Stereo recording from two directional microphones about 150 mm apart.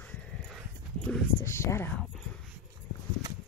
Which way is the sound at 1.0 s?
15° left (ahead or behind).